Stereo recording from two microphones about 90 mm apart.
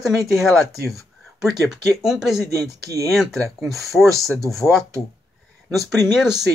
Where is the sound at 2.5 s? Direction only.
35° right (ahead or behind).